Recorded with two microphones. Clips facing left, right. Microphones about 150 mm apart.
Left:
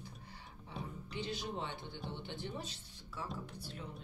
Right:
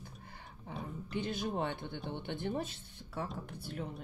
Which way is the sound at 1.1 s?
50° right (ahead or behind).